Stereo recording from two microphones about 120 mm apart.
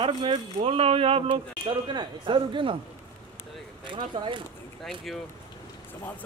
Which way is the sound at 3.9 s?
40° right (ahead or behind).